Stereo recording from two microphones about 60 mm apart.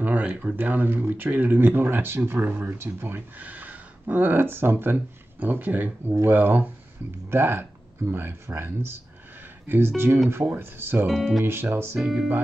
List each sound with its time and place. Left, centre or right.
0.0 s a sound: right
0.6 s speech: right
11.1 s speech: centre
11.4 s speech: right
12.0 s speech: centre